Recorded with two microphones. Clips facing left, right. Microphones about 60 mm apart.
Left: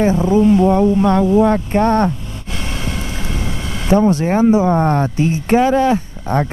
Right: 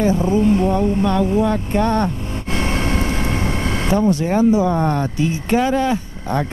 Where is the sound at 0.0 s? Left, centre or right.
Left.